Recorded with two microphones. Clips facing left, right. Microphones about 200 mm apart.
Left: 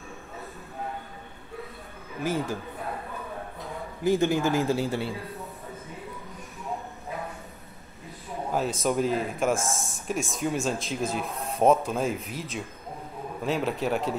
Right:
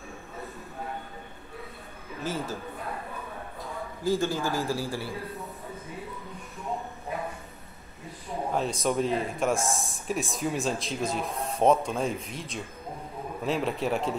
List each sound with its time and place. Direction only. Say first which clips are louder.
2.2 s speech: left 4 dB; 15° left (ahead or behind)
4.0 s a man's voice: left 4 dB; 20° left (ahead or behind)
8.5 s speech: left 2 dB; centre (ahead or behind)
11.2 s speech: right 1 dB; 30° right (ahead or behind)
11.6 s speech: left 1 dB; 5° left (ahead or behind)
13.4 s speech: left 1 dB; centre (ahead or behind)